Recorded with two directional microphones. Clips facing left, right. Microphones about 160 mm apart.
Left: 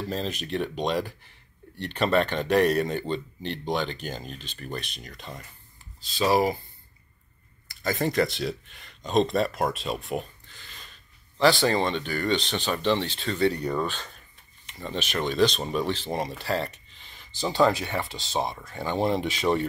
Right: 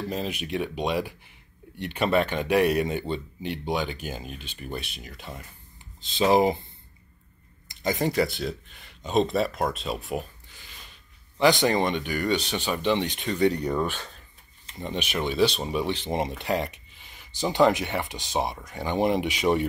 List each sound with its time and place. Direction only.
0.1 s speech: 10° right (ahead or behind)
6.0 s speech: 20° right (ahead or behind)
7.6 s speech: 20° right (ahead or behind); by 10.2 s centre (ahead or behind)
10.5 s a sound: 10° right (ahead or behind)
11.3 s speech: 15° right (ahead or behind)